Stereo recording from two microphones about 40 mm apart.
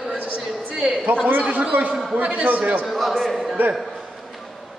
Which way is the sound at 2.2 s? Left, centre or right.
Right.